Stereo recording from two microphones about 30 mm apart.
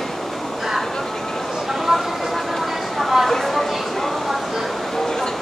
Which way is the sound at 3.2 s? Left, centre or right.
Centre.